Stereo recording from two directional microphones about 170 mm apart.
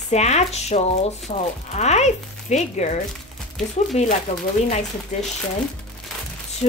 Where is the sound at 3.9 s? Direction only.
40° left (ahead or behind).